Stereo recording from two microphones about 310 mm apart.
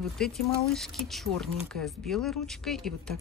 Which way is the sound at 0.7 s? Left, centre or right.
Centre.